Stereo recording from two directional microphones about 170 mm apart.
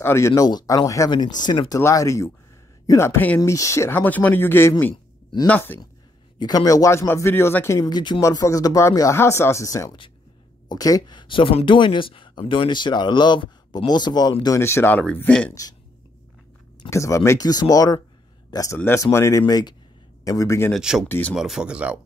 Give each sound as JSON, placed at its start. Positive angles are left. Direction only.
{"t": 0.0, "sound": "speech", "side_deg": 15}
{"t": 6.4, "sound": "speech", "side_deg": 20}
{"t": 16.9, "sound": "speech", "side_deg": 15}
{"t": 20.7, "sound": "speech", "side_deg": -5}
{"t": 21.1, "sound": "speech", "side_deg": 10}
{"t": 21.4, "sound": "speech", "side_deg": -5}